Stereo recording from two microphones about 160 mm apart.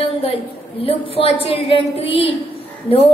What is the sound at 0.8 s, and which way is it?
A woman's voice, 35° left (ahead or behind).